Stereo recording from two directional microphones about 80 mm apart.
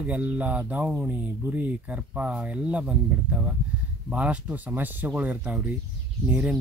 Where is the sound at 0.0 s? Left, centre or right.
Centre.